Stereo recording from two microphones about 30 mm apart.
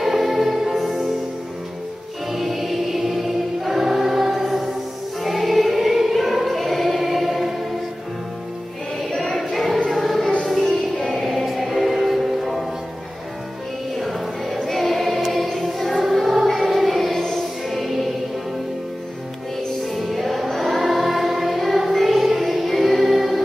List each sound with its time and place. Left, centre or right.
0.0 s music: centre
2.3 s choir: centre
5.2 s music: centre
9.1 s choir: centre
9.8 s music: centre
13.9 s choir: centre
15.6 s music: centre
17.1 s music: centre
17.6 s music: centre
19.8 s music: centre
20.4 s choir: centre
20.8 s music: centre